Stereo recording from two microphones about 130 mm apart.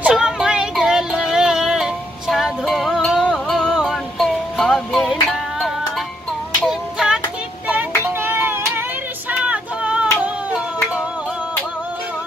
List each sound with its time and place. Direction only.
0.0 s a sound: 5° right (ahead or behind)
6.6 s music: 5° right (ahead or behind)
7.6 s child singing: 15° right (ahead or behind)